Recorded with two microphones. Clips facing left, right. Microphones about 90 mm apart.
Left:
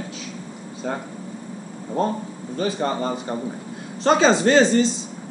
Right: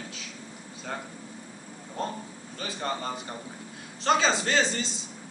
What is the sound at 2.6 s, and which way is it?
A man's voice, 35° left (ahead or behind).